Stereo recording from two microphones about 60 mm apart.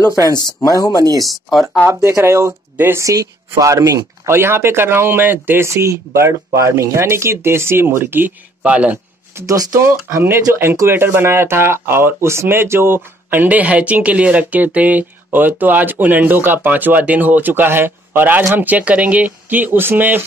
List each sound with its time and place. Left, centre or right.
0.7 s speech: left
1.2 s speech: centre
1.9 s speech: right
3.0 s speech: right
4.3 s speech: right
5.8 s speech: right
8.6 s speech: right
9.8 s speech: right